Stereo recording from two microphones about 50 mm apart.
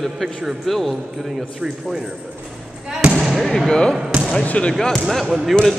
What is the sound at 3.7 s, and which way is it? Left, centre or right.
Speech, centre.